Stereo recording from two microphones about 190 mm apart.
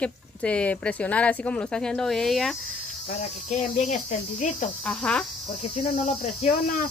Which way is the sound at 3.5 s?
40° left (ahead or behind).